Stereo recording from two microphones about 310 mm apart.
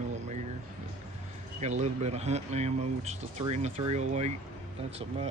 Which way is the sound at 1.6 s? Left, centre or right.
Right.